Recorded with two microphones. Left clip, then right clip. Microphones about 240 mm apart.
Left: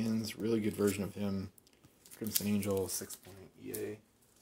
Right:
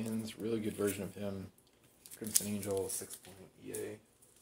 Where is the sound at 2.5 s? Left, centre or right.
Left.